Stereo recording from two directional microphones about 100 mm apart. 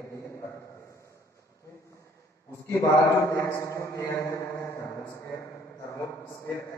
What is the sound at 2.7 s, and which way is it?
A man's voice, 30° left (ahead or behind).